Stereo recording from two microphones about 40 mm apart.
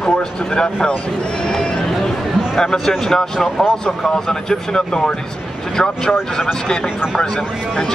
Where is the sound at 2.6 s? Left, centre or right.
Centre.